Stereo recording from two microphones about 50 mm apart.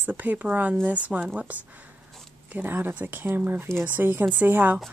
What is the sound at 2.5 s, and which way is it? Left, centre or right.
Speech, right.